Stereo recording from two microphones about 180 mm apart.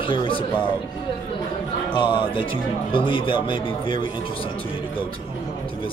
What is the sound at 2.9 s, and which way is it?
Speech, 25° left (ahead or behind).